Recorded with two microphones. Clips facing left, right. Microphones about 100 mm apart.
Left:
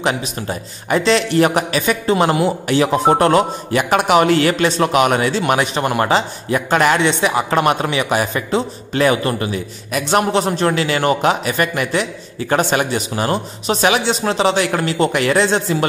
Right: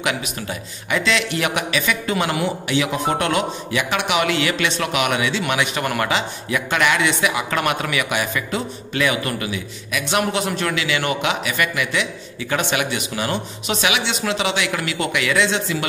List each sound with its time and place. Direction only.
0.0 s speech: 35° left (ahead or behind)